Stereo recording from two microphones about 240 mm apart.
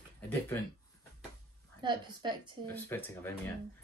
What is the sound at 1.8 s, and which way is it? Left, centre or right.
Speech, centre.